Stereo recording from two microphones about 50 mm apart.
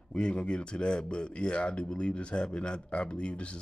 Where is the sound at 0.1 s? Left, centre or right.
Centre.